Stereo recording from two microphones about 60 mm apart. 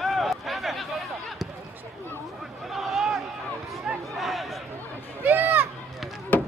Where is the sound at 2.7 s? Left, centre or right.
Centre.